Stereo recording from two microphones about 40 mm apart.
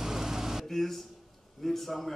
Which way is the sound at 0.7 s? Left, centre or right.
Centre.